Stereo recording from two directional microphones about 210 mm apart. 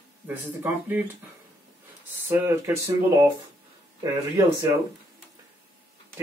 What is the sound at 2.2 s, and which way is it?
Speech, 10° right (ahead or behind).